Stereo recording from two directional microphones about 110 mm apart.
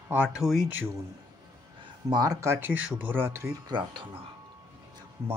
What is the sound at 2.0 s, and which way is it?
Speech, 35° right (ahead or behind).